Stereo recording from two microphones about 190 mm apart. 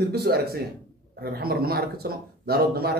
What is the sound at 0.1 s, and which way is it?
A man's voice, 55° right (ahead or behind).